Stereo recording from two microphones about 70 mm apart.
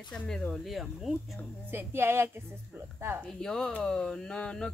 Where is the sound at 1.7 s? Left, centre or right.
Right.